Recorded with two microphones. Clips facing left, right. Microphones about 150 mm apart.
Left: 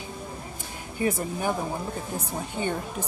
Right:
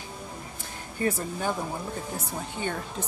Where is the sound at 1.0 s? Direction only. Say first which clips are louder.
Left 2 dB; 15° left (ahead or behind).